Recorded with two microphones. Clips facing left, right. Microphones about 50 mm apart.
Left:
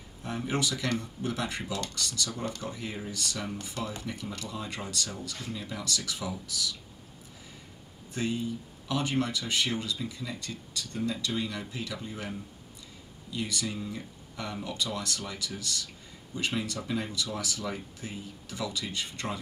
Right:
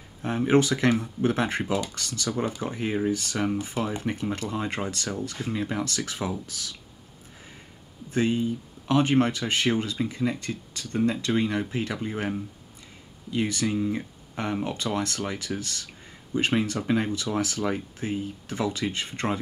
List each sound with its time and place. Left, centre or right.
0.2 s speech: right
8.1 s speech: right